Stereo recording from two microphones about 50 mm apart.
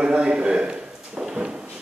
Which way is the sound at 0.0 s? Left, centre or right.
Centre.